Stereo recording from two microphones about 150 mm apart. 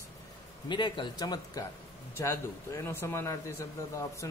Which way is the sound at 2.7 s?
15° left (ahead or behind).